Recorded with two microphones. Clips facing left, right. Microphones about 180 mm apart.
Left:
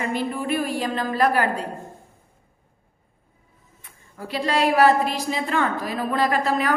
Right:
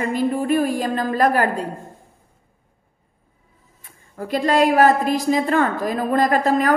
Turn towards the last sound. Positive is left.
turn(degrees=-45)  # may be behind; listen again after turning